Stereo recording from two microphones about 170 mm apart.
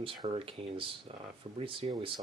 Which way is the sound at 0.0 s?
30° right (ahead or behind).